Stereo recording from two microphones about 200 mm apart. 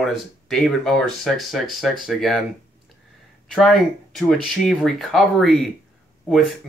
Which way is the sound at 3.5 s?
Centre (ahead or behind).